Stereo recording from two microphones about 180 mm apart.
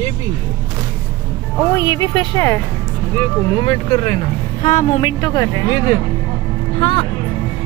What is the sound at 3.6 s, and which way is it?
Speech, 30° left (ahead or behind).